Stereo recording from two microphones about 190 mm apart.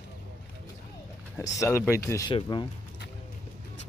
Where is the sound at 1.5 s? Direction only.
15° left (ahead or behind).